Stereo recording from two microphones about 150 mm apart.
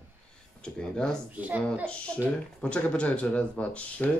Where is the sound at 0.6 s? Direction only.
5° left (ahead or behind).